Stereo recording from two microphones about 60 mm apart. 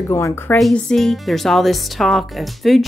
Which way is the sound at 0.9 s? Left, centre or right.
Centre.